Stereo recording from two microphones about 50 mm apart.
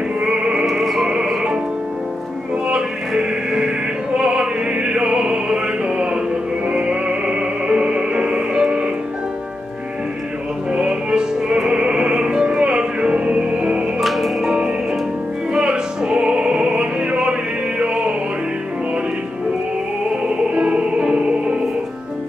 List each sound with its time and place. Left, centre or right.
0.2 s music: right
0.7 s music: centre
1.0 s music: centre
3.2 s music: centre
10.7 s music: right
13.9 s music: centre
15.5 s music: centre
20.5 s music: right